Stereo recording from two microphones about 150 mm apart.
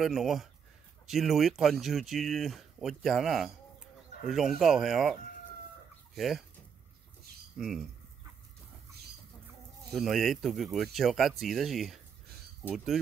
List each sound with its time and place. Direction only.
0.0 s speech: centre (ahead or behind)
6.1 s speech: centre (ahead or behind)
7.5 s speech: centre (ahead or behind)
9.9 s speech: centre (ahead or behind)